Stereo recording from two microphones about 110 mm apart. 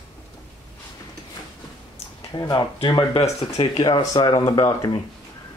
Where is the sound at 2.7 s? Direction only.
55° left (ahead or behind).